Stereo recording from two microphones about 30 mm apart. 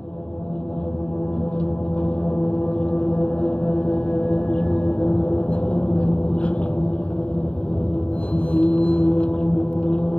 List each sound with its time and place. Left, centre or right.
2.3 s gong: left
8.5 s music: left